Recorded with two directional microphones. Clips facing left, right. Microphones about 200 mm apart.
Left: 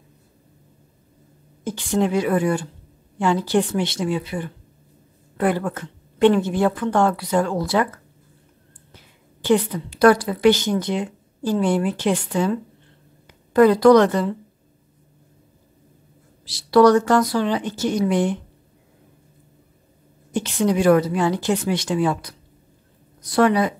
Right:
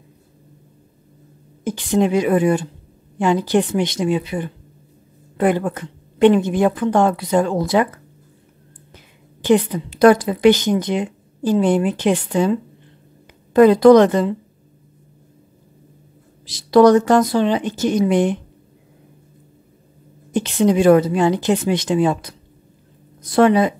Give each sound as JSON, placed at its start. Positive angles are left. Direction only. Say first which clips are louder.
{"t": 1.6, "sound": "a woman's voice", "louder": "right 3 dB", "side_deg": -15}
{"t": 8.9, "sound": "a woman's voice", "louder": "right 2 dB", "side_deg": -15}
{"t": 16.4, "sound": "speech", "louder": "right 3 dB", "side_deg": -20}
{"t": 20.3, "sound": "speech", "louder": "right 4 dB", "side_deg": -20}